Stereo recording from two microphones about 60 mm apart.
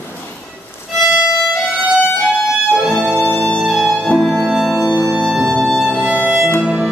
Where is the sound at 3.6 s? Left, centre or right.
Centre.